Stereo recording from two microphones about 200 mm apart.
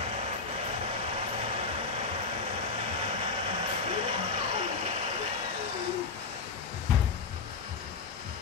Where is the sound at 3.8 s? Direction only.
30° right (ahead or behind).